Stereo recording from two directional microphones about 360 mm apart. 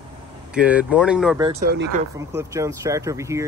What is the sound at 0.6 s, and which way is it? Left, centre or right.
Speech, centre.